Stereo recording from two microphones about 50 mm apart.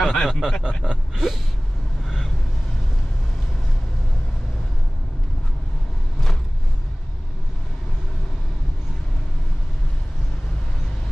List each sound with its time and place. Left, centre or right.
0.0 s a sound: centre
0.3 s speech: centre
0.7 s speech: centre
1.1 s gasp: centre